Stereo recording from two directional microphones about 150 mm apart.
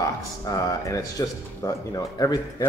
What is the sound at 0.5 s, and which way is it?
Speech, 20° left (ahead or behind).